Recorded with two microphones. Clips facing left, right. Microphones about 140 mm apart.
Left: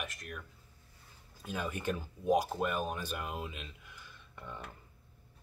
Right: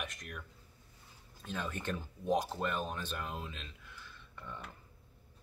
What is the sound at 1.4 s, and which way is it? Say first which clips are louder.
Speech: left 3 dB; 10° left (ahead or behind).